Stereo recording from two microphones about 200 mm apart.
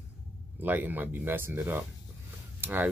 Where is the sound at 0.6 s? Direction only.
10° right (ahead or behind).